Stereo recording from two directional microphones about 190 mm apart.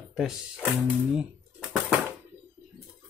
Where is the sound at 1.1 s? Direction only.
Centre (ahead or behind).